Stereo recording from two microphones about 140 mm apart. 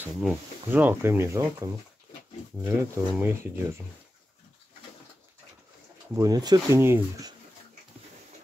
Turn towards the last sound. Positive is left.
turn(degrees=-15)  # may be behind; listen again after turning